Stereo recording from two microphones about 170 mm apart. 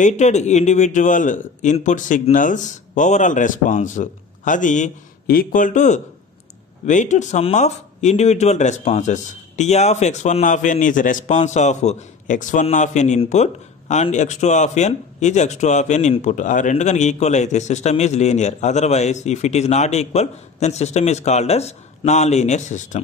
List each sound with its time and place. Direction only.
0.0 s a man's voice: 45° left (ahead or behind)